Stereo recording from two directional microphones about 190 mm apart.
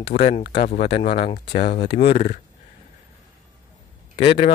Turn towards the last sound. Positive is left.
turn(degrees=30)  # may be behind; listen again after turning